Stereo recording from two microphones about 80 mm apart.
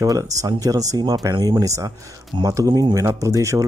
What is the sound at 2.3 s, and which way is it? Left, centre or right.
Speech, right.